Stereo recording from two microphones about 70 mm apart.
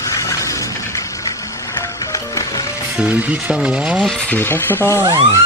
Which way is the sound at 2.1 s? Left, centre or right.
Left.